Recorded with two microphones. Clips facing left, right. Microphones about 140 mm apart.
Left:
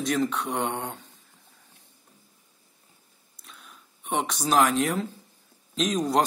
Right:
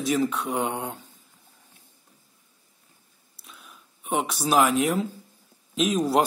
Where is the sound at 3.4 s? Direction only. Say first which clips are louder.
Right 1 dB; centre (ahead or behind).